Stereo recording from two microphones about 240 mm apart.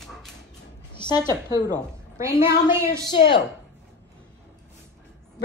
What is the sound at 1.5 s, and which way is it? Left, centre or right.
Speech, centre.